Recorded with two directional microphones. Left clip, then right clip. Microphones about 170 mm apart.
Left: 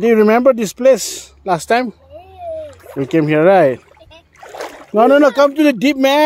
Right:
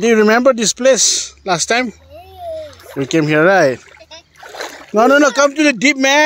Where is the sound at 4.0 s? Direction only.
90° left.